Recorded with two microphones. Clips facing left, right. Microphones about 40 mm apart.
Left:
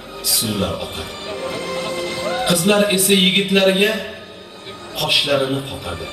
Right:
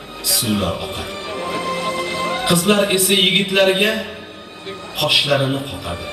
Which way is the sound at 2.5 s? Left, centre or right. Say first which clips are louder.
Even; right.